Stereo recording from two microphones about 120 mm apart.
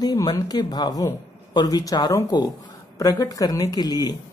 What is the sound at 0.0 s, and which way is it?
Speech, 35° left (ahead or behind).